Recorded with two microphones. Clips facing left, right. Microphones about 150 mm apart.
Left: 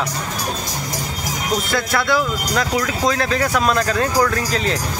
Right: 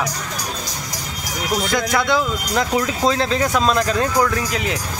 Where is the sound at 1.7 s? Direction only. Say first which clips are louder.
Right 1 dB; 15° right (ahead or behind).